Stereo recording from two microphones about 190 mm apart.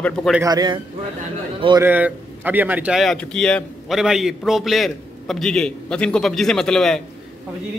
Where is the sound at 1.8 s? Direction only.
10° right (ahead or behind).